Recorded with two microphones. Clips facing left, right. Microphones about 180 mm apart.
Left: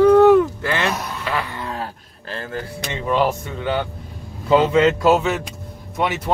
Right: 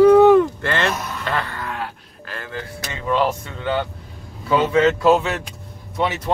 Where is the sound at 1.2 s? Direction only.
10° left (ahead or behind).